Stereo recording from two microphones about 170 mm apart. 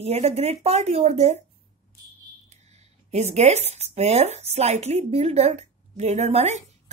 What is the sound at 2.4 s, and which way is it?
Speech, 40° right (ahead or behind).